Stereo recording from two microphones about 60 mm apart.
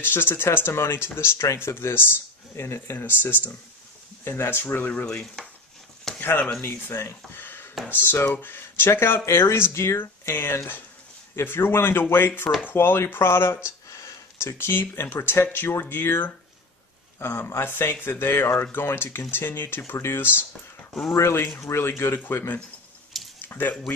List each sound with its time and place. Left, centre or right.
0.0 s speech: left
5.4 s dishes: centre
6.1 s speech: left
6.7 s speech: left
9.2 s speech: left
13.7 s a sound: left
15.1 s speech: left
23.4 s speech: left